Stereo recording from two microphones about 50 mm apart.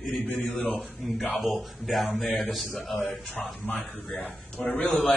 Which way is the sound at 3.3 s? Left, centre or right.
Left.